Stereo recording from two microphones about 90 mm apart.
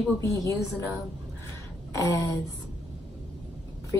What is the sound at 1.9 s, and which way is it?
Speech, 35° left (ahead or behind).